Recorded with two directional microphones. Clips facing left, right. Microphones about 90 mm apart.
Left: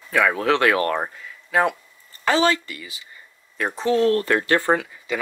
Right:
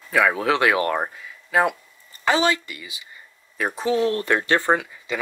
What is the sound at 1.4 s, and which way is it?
Speech, centre (ahead or behind).